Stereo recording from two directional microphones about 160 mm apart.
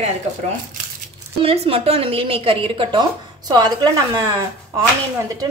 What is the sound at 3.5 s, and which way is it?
Speech, 25° right (ahead or behind).